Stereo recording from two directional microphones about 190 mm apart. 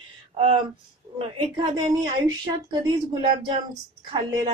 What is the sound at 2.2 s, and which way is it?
A woman's voice, 20° right (ahead or behind).